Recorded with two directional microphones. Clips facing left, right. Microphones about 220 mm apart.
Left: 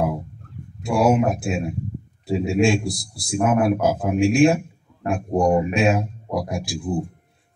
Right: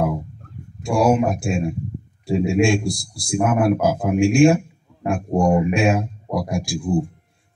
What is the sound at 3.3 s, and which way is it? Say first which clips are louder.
Speech: right 1 dB; centre (ahead or behind).